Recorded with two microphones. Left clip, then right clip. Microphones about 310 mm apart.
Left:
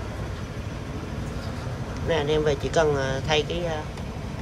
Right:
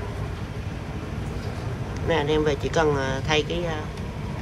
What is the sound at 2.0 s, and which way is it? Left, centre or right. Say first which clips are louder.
Speech: right 1 dB; centre.